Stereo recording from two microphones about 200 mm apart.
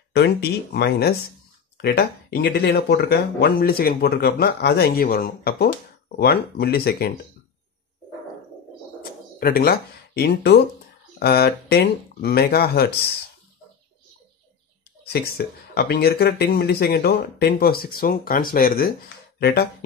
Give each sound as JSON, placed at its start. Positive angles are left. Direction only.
{"t": 0.1, "sound": "speech", "side_deg": 55}
{"t": 9.4, "sound": "speech", "side_deg": 50}
{"t": 15.0, "sound": "speech", "side_deg": 50}